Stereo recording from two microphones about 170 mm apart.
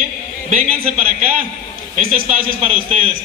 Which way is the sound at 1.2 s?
40° right (ahead or behind).